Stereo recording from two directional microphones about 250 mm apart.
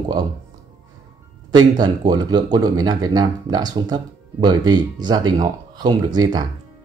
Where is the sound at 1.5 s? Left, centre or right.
Centre.